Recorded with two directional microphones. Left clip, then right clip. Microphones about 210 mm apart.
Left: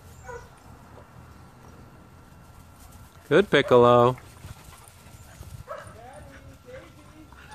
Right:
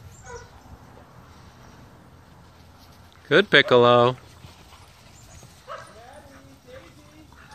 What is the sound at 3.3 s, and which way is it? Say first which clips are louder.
Speech: right 3 dB; 5° left (ahead or behind).